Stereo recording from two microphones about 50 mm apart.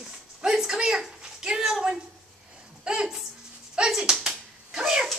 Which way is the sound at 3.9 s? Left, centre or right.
Centre.